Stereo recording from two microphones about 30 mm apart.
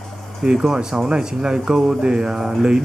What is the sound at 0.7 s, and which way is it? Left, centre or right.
Speech, right.